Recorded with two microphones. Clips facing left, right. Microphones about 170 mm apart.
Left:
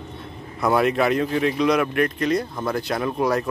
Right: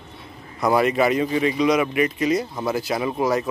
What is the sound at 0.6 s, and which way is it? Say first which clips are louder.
Speech: right 1 dB; centre (ahead or behind).